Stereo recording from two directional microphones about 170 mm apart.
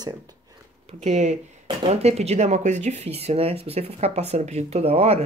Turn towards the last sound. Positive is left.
turn(degrees=-35)  # may be behind; listen again after turning